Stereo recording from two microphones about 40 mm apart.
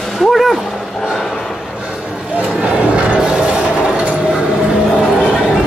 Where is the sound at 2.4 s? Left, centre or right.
Right.